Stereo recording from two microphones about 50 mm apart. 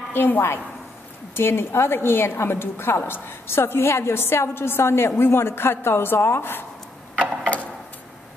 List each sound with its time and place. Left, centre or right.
0.1 s a woman's voice: left